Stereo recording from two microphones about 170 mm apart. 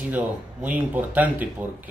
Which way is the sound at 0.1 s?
10° right (ahead or behind).